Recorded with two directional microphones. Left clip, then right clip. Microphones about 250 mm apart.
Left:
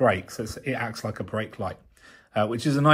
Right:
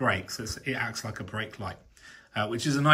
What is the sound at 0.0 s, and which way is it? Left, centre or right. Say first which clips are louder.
Speech: left 5 dB; centre.